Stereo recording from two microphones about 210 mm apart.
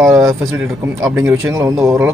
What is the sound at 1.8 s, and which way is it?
Speech, 10° right (ahead or behind).